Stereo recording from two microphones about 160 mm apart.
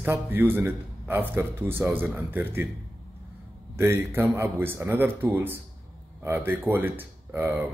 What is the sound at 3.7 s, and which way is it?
A man's voice, 15° right (ahead or behind).